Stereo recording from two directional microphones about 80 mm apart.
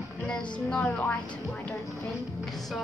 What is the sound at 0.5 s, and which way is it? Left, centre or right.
Speech, centre.